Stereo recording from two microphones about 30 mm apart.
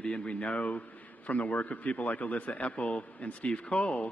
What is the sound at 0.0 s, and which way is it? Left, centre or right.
A man's voice, left.